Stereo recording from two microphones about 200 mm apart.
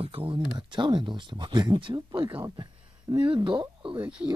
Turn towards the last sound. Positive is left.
turn(degrees=-5)  # may be behind; listen again after turning